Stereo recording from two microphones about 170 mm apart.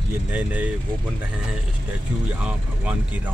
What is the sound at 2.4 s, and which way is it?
Speech, 5° right (ahead or behind).